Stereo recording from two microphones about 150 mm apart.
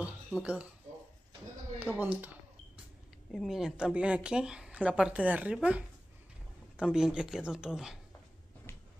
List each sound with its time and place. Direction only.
0.0 s a sound: 5° right (ahead or behind)
1.8 s speech: 10° right (ahead or behind)
3.3 s speech: 5° right (ahead or behind)